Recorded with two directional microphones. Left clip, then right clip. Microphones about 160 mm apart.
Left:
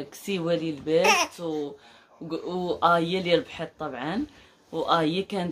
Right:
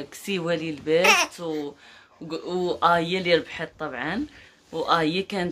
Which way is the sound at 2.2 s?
10° right (ahead or behind).